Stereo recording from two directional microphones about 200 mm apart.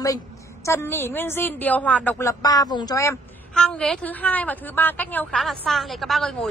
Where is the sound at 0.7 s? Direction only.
15° left (ahead or behind).